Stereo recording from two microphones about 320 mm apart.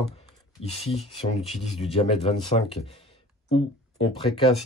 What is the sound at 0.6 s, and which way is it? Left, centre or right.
Speech, centre.